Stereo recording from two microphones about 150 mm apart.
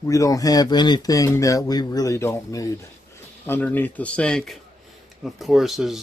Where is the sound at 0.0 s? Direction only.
20° left (ahead or behind).